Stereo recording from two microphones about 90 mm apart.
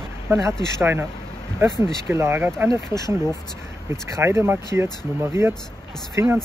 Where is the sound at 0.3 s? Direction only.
30° right (ahead or behind).